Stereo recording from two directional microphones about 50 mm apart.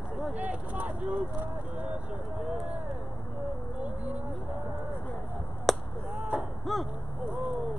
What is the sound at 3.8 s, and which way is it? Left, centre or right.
Speech, right.